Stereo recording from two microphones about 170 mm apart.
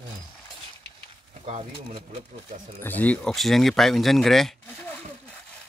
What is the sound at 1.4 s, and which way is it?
Speech, 40° right (ahead or behind).